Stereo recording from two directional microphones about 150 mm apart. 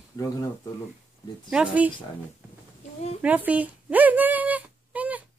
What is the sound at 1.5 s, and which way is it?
Speech, 10° right (ahead or behind).